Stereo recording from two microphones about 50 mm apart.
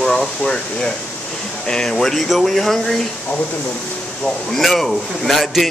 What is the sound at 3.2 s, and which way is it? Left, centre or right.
Speech, left.